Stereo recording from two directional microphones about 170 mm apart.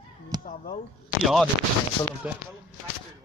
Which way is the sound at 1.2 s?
Centre (ahead or behind).